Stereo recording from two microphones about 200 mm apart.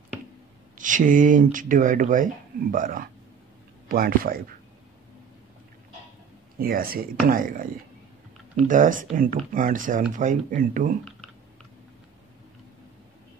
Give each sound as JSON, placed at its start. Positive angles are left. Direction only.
{"t": 0.7, "sound": "speech", "side_deg": -40}
{"t": 6.6, "sound": "speech", "side_deg": -45}
{"t": 8.6, "sound": "speech", "side_deg": -40}